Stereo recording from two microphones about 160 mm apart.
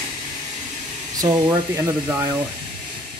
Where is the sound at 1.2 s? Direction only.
20° right (ahead or behind).